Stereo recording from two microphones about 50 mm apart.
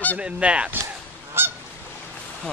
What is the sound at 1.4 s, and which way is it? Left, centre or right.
Goose, right.